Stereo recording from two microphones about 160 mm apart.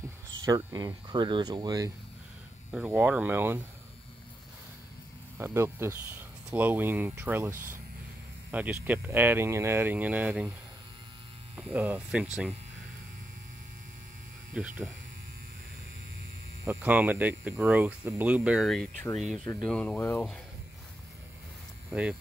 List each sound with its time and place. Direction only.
0.5 s speech: 20° right (ahead or behind)
2.7 s speech: 10° right (ahead or behind)
5.4 s speech: 15° right (ahead or behind)
11.5 s speech: 10° right (ahead or behind)
14.5 s speech: 5° right (ahead or behind)
16.6 s speech: 10° right (ahead or behind); by 20.3 s 10° left (ahead or behind)